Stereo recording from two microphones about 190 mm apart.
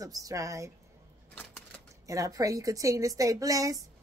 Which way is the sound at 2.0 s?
15° right (ahead or behind).